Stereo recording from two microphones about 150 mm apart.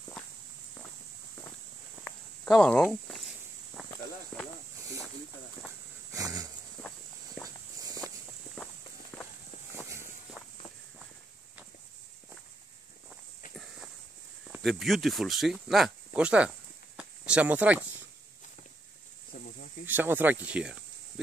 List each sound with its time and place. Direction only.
2.0 s a sound: 5° left (ahead or behind)
3.8 s walk: 5° right (ahead or behind)
4.3 s snake: 5° left (ahead or behind)
6.1 s a sound: 25° right (ahead or behind)
7.4 s walk: centre (ahead or behind)
9.1 s walk: 5° left (ahead or behind)
9.8 s walk: 20° right (ahead or behind)
14.6 s speech: centre (ahead or behind)
19.3 s snake: 70° left (ahead or behind)
19.9 s speech: 15° right (ahead or behind)